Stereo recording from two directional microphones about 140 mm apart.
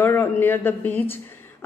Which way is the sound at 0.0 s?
15° left (ahead or behind).